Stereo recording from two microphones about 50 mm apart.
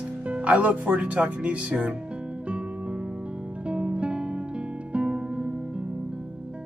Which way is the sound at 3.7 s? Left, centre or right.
Right.